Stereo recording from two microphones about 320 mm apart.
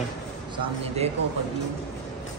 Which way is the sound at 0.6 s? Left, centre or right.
Centre.